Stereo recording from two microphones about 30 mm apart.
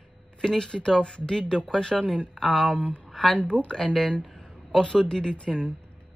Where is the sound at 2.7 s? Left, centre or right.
Left.